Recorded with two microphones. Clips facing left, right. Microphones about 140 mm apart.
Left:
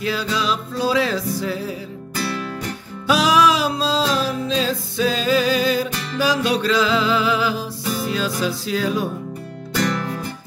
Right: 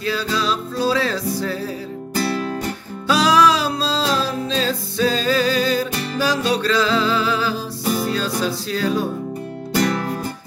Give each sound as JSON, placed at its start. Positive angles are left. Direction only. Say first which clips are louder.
{"t": 0.0, "sound": "music", "louder": "right 1 dB", "side_deg": 10}
{"t": 2.1, "sound": "music", "louder": "right 4 dB", "side_deg": -35}
{"t": 3.1, "sound": "music", "louder": "right 1 dB", "side_deg": 5}
{"t": 4.6, "sound": "music", "louder": "right 3 dB", "side_deg": 10}
{"t": 5.9, "sound": "music", "louder": "even", "side_deg": -30}
{"t": 6.6, "sound": "music", "louder": "even", "side_deg": 10}
{"t": 9.8, "sound": "music", "louder": "right 2 dB", "side_deg": -40}